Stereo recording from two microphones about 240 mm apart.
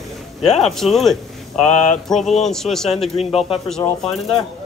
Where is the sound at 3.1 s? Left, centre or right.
Left.